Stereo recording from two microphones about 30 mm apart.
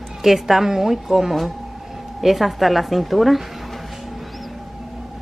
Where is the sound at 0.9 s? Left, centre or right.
Centre.